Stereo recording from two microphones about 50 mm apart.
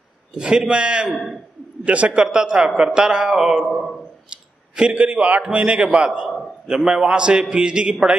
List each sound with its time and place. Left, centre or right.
0.3 s a man's voice: centre
1.0 s a man's voice: centre
1.9 s a man's voice: right
3.6 s a man's voice: centre
4.3 s a man's voice: centre
6.2 s a man's voice: centre
6.9 s a man's voice: centre